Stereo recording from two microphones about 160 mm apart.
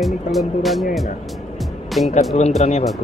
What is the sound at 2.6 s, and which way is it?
Speech, 45° left (ahead or behind).